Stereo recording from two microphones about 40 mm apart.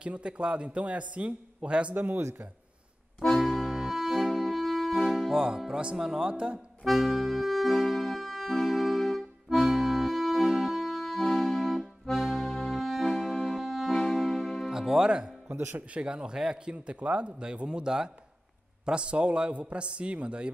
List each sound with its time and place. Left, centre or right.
0.0 s a man's voice: right
2.0 s speech: right
3.3 s accordion: centre
5.7 s speech: right
6.3 s a man's voice: right
6.8 s music: centre
11.2 s music: centre
11.8 s accordion: centre
13.2 s music: centre
14.7 s music: centre
15.5 s speech: right
15.9 s a man's voice: right
16.7 s a man's voice: right